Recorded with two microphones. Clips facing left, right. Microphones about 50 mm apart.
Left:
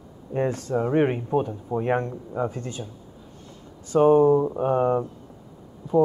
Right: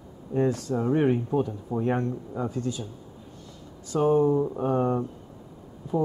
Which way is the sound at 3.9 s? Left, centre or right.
Left.